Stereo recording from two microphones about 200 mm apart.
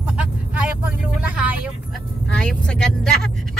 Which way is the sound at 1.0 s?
5° right (ahead or behind).